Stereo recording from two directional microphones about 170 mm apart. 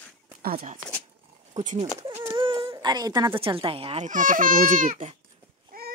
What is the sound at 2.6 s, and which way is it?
A woman's voice, 25° right (ahead or behind).